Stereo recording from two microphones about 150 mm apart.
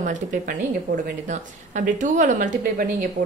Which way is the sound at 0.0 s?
60° right (ahead or behind).